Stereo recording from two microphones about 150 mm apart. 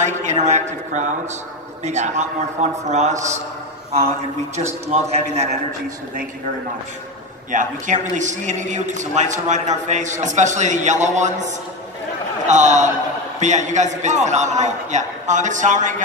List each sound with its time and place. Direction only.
0.0 s a man's voice: 55° right (ahead or behind)
4.9 s a man's voice: 45° right (ahead or behind)
7.5 s a man's voice: 55° right (ahead or behind)